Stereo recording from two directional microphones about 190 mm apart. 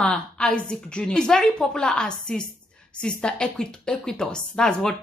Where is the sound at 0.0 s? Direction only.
5° left (ahead or behind).